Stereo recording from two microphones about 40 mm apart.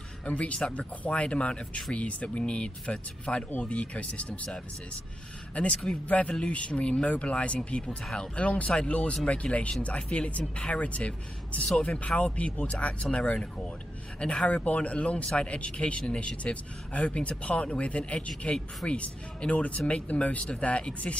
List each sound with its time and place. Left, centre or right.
0.2 s speech: left
5.5 s speech: left
8.0 s speech: centre
8.4 s speech: left